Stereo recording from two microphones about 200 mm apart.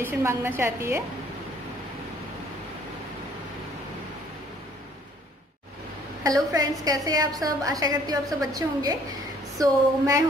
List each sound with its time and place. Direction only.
0.0 s a woman's voice: 10° right (ahead or behind)
6.2 s a woman's voice: 15° right (ahead or behind)